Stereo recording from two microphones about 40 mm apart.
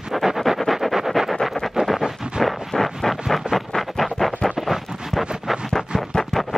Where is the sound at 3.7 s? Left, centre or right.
Centre.